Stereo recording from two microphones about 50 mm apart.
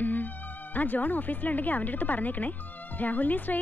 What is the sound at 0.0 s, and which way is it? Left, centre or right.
Music, left.